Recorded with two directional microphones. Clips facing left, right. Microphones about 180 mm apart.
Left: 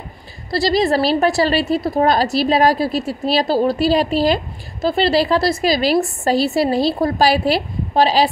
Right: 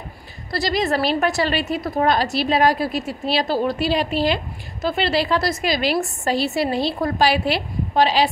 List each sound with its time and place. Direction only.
0.5 s a woman's voice: 30° left (ahead or behind)